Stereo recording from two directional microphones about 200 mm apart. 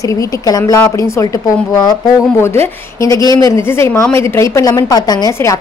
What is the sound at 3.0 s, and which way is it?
A woman's voice, 15° left (ahead or behind).